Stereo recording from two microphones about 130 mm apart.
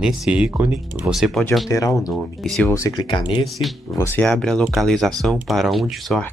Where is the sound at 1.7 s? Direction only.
25° left (ahead or behind).